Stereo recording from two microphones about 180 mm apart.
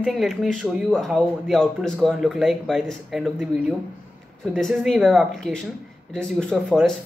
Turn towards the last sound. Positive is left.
turn(degrees=0)  # may be behind; listen again after turning